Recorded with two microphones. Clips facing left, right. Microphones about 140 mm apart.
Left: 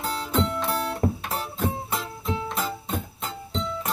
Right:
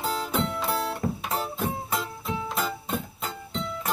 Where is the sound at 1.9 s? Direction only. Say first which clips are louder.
Left 1 dB; centre (ahead or behind).